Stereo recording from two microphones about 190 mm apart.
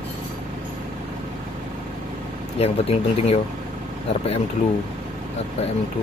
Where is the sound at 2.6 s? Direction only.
30° left (ahead or behind).